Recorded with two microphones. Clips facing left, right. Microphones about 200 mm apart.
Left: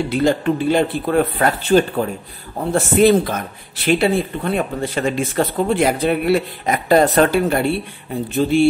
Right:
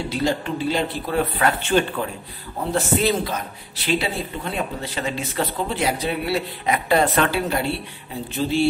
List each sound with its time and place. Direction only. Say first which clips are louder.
0.1 s speech: left 6 dB; 55° left (ahead or behind)
1.6 s speech: left 8 dB; 40° left (ahead or behind)
2.7 s speech: left 8 dB; 55° left (ahead or behind)